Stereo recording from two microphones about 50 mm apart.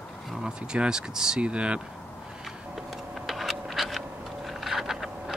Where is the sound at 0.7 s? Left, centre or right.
Centre.